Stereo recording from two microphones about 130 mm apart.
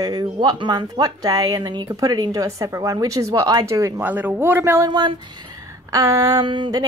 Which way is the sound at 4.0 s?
15° right (ahead or behind).